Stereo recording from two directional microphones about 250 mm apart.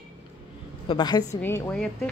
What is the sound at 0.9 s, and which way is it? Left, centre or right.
A woman's voice, centre.